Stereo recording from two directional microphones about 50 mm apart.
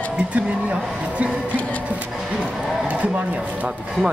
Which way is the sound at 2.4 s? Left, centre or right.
Right.